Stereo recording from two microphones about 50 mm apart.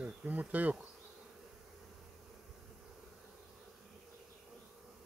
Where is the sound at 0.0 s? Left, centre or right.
Right.